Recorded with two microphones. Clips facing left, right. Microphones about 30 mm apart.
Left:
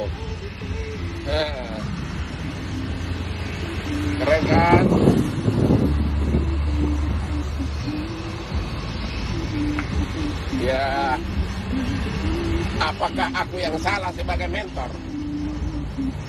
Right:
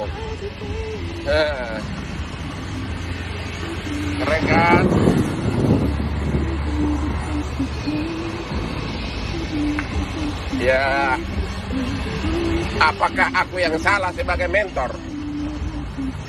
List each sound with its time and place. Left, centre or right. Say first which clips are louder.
3.9 s vehicle: even; right
4.4 s speech: right 5 dB; right
4.6 s vehicle: left 1 dB; right
10.5 s speech: right 5 dB; right
11.7 s speech: right 1 dB; right